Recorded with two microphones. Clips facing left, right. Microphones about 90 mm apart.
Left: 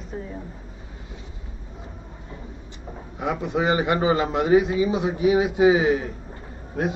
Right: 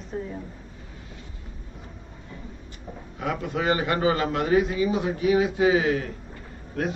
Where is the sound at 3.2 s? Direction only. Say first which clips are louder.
Left 3 dB; 20° left (ahead or behind).